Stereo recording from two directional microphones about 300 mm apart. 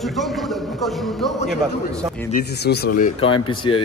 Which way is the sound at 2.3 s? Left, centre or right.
Left.